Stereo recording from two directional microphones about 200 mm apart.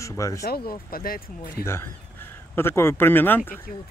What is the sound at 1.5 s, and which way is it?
Speech, 15° left (ahead or behind).